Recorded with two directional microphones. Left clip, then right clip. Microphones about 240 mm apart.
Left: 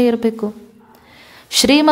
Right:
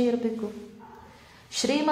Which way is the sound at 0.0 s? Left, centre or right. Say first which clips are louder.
Left 10 dB; left.